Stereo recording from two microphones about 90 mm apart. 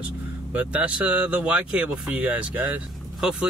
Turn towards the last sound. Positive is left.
turn(degrees=-10)  # may be behind; listen again after turning